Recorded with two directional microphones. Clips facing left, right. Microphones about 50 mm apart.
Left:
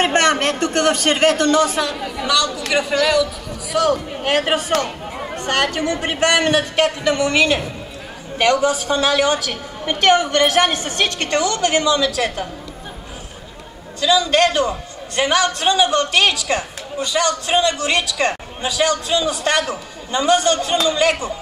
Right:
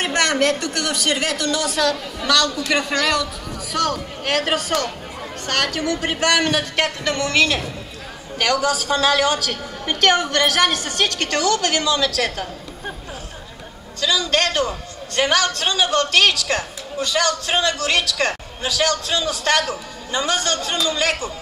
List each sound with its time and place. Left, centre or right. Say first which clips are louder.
0.0 s speech: left 3 dB; left
1.8 s a man's voice: right 1 dB; centre
14.0 s a man's voice: left 5 dB; centre